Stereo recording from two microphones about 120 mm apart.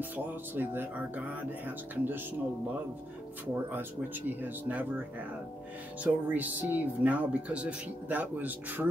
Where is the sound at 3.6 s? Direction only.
15° right (ahead or behind).